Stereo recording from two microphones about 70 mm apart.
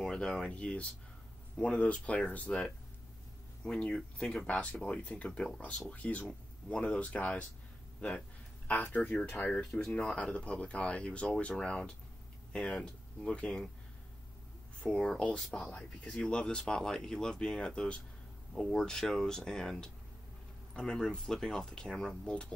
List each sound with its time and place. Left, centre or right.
0.0 s speech: centre
8.6 s speech: left
9.8 s speech: centre
14.8 s speech: centre